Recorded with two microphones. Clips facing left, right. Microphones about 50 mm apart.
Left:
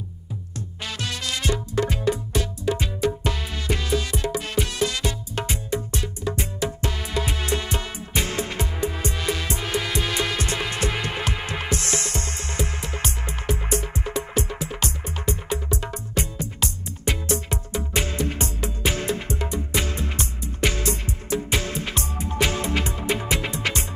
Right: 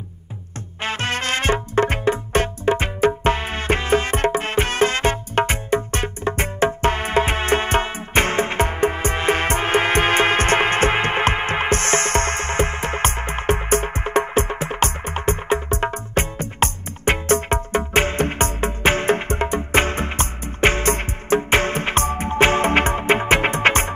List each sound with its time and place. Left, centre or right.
0.8 s music: right